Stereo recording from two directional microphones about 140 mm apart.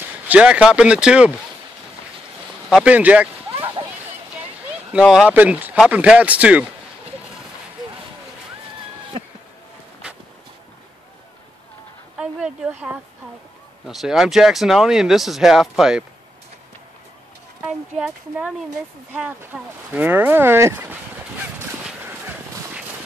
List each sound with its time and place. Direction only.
0.3 s speech: 10° right (ahead or behind)
2.7 s speech: 10° right (ahead or behind)
3.5 s a sound: 35° right (ahead or behind)
4.9 s speech: 5° right (ahead or behind)
12.2 s speech: 5° right (ahead or behind)
13.8 s speech: centre (ahead or behind)
17.6 s speech: 5° right (ahead or behind)
22.0 s a sound: 15° right (ahead or behind)